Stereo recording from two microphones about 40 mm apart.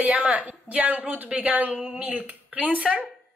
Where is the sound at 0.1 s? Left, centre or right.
Right.